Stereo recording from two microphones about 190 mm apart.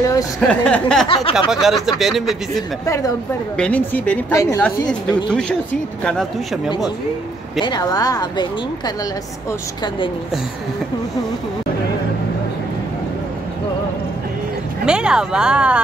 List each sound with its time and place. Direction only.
0.0 s speech: 15° left (ahead or behind)
0.5 s speech: 5° left (ahead or behind)
1.0 s speech: 30° left (ahead or behind)
1.5 s speech: centre (ahead or behind)
2.8 s a woman's voice: 15° left (ahead or behind)
3.5 s a woman's voice: 5° left (ahead or behind)
7.6 s speech: 20° left (ahead or behind)
14.9 s speech: 5° right (ahead or behind)